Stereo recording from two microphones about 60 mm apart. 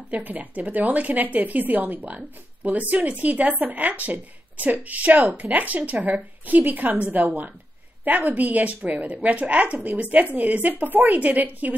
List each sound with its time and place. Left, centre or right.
0.1 s a woman's voice: right